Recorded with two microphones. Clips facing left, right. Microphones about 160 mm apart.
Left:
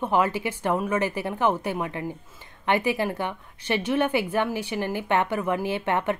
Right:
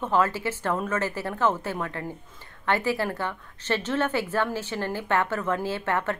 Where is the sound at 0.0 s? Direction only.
15° left (ahead or behind).